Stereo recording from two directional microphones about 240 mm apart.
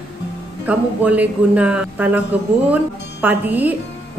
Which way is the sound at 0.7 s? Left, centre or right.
Centre.